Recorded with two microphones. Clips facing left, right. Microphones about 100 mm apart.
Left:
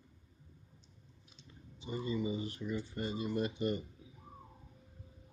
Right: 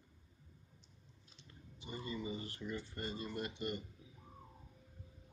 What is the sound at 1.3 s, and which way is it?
Clicking, 20° left (ahead or behind).